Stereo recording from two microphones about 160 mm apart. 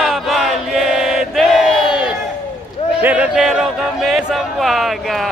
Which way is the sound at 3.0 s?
10° right (ahead or behind).